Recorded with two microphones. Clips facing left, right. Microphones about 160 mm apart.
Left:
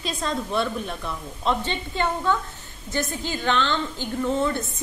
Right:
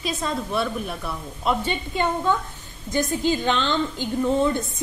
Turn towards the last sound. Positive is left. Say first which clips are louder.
# right 3 dB
turn(degrees=-15)  # may be behind; listen again after turning